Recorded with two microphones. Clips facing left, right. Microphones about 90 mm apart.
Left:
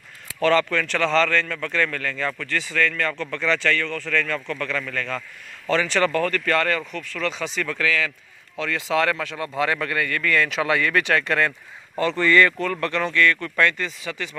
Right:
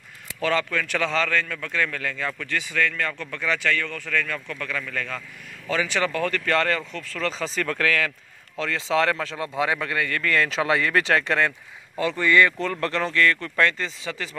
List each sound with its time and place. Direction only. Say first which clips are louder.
0.4 s speech: left 5 dB; 10° right (ahead or behind)
6.9 s speech: left 1 dB; 35° right (ahead or behind)
8.6 s speech: even; 25° right (ahead or behind)
9.5 s speech: left 2 dB; 10° right (ahead or behind)
12.8 s speech: left 1 dB; 35° right (ahead or behind)